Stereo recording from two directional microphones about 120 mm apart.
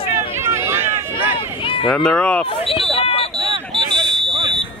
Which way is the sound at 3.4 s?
45° right (ahead or behind).